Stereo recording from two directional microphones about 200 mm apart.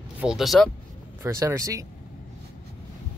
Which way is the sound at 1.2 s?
10° right (ahead or behind).